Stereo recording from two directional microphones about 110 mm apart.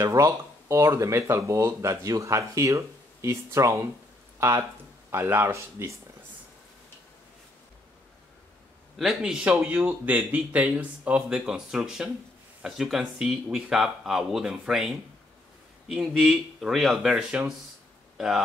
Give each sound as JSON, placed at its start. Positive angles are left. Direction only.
{"t": 0.0, "sound": "speech", "side_deg": -30}
{"t": 8.9, "sound": "speech", "side_deg": -5}
{"t": 18.1, "sound": "a sound", "side_deg": -5}